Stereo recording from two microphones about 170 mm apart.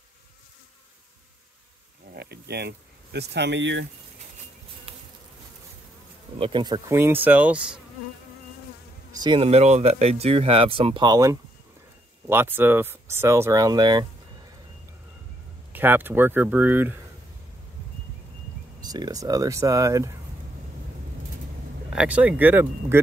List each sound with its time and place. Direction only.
2.1 s speech: 75° right (ahead or behind); by 3.8 s 90° right
6.3 s speech: 30° right (ahead or behind)
7.0 s speech: 10° right (ahead or behind)
9.1 s speech: 25° right (ahead or behind)
15.7 s speech: 10° right (ahead or behind)
18.8 s speech: 25° right (ahead or behind)
21.9 s speech: 10° right (ahead or behind)